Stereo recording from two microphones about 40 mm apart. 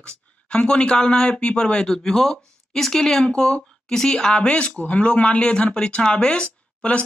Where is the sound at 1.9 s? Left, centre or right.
Centre.